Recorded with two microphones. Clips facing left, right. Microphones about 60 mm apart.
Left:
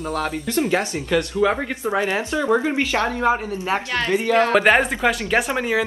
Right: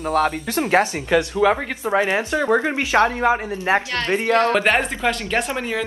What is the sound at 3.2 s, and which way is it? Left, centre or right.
Speech, right.